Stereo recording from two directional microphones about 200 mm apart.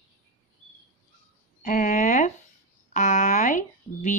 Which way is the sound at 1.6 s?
40° left (ahead or behind).